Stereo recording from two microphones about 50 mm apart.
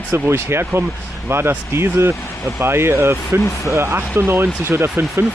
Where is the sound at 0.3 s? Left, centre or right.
Right.